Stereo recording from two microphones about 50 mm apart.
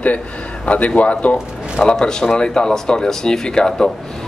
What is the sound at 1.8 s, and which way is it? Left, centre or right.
Speech, centre.